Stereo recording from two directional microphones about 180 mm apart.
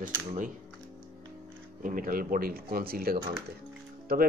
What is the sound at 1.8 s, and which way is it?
Speech, 50° right (ahead or behind).